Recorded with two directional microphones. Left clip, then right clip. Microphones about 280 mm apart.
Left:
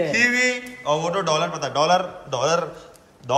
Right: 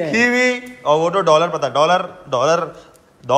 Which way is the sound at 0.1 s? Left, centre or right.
Centre.